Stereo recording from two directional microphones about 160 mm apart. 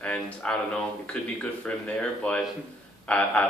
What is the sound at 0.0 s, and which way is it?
Speech, 5° left (ahead or behind).